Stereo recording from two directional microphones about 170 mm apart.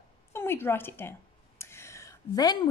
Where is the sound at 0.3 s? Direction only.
15° left (ahead or behind).